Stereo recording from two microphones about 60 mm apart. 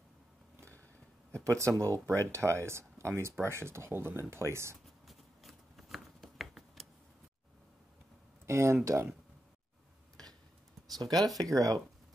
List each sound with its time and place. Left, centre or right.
1.4 s speech: right
5.0 s shuffling cards: centre
8.5 s speech: right
11.0 s speech: right